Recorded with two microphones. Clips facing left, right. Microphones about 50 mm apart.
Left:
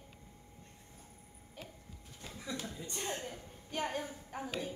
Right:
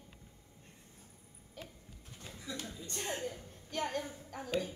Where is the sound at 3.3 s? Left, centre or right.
Centre.